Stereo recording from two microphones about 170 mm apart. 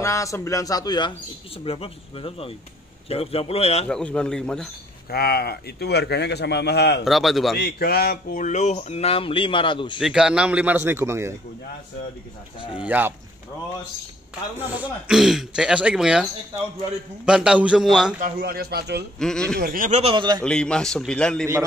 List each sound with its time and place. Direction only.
0.0 s a man's voice: 20° left (ahead or behind); by 3.8 s 35° left (ahead or behind)
3.9 s speech: 5° left (ahead or behind)
5.1 s a man's voice: 65° left (ahead or behind)
7.1 s speech: centre (ahead or behind)
7.5 s speech: 75° left (ahead or behind); by 9.9 s 30° left (ahead or behind)
9.9 s a man's voice: centre (ahead or behind)
12.7 s a man's voice: 10° right (ahead or behind)
14.8 s speech: 5° right (ahead or behind)
18.2 s a man's voice: 65° right (ahead or behind)
19.1 s speech: 5° left (ahead or behind)
19.5 s speech: 60° right (ahead or behind)
20.0 s a man's voice: 30° right (ahead or behind)
20.4 s speech: 5° left (ahead or behind)